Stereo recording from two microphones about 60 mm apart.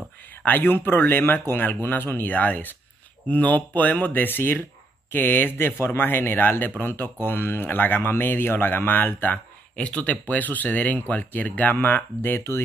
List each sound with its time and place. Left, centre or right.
0.5 s speech: left